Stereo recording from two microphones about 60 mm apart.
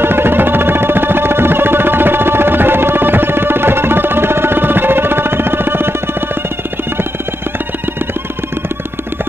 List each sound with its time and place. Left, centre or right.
0.0 s music: right